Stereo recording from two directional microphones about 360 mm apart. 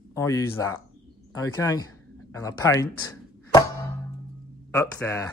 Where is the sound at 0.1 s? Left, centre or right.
Centre.